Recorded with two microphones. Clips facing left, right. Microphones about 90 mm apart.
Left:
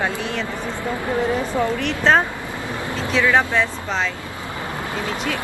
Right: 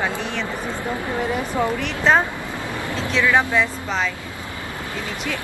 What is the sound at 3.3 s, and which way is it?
Speech, centre (ahead or behind).